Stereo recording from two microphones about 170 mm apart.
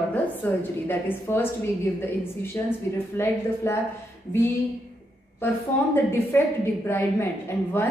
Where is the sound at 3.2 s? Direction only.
15° left (ahead or behind).